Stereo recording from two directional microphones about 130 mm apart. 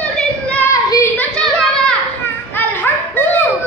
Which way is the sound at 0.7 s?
25° left (ahead or behind).